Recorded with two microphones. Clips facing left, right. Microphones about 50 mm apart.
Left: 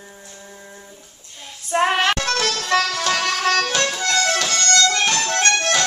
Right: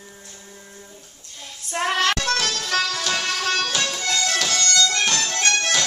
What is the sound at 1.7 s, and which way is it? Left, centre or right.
Child singing, left.